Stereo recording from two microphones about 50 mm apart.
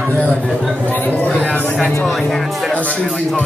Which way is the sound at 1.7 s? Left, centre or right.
Centre.